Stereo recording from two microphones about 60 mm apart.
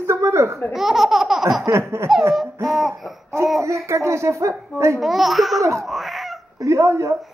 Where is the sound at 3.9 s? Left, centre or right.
Right.